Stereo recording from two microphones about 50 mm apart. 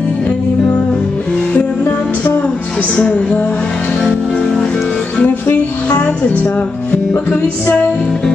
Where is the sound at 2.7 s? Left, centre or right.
Left.